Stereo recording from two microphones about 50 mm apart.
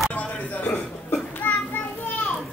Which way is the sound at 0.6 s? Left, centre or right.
Left.